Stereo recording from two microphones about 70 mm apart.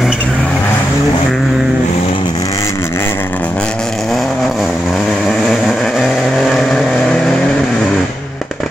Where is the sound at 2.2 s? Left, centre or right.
Left.